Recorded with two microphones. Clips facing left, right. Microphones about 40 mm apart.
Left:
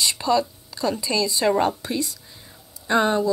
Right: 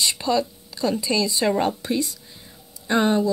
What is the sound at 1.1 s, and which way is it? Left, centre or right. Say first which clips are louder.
Speech: even; right.